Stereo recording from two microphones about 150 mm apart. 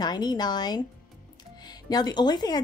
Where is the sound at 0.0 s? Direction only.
25° left (ahead or behind).